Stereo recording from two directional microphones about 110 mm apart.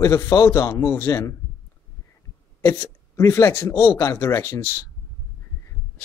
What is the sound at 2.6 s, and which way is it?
Speech, 20° left (ahead or behind).